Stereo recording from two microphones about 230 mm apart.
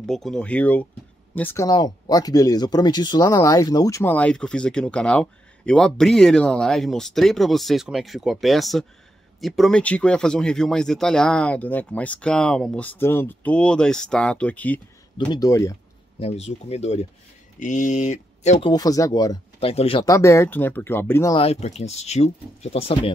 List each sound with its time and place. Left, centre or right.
0.0 s speech: centre
15.1 s speech: centre
16.2 s speech: left
18.7 s speech: centre
21.4 s speech: left